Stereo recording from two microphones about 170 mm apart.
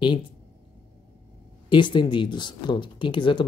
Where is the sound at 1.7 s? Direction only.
30° left (ahead or behind).